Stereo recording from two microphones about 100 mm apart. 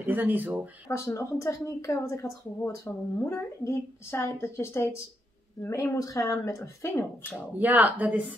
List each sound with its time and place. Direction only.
0.0 s speech: 20° right (ahead or behind)
0.8 s a woman's voice: 30° left (ahead or behind)
7.5 s speech: 15° right (ahead or behind)